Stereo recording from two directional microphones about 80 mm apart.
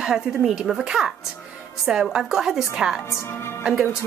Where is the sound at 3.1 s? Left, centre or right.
Left.